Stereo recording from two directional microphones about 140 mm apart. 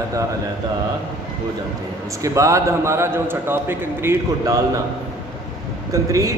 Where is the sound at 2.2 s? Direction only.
20° right (ahead or behind).